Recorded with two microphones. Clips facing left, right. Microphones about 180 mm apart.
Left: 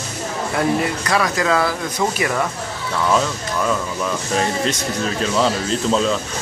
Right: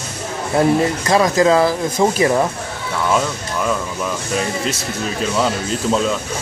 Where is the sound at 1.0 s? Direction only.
25° right (ahead or behind).